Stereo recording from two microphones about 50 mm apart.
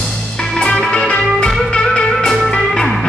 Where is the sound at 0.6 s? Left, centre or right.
Left.